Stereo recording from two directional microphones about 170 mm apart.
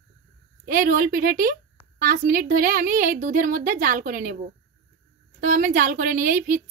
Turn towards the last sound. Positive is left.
turn(degrees=-50)  # may be behind; listen again after turning